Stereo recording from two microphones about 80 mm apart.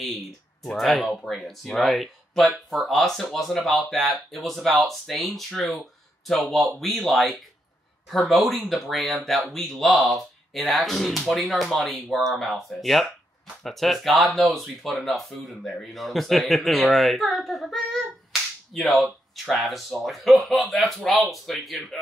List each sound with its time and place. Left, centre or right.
0.6 s speech: centre
5.8 s a sound: centre
6.5 s speech: centre